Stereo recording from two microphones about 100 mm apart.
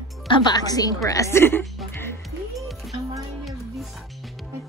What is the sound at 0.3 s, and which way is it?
A woman's voice, 45° left (ahead or behind).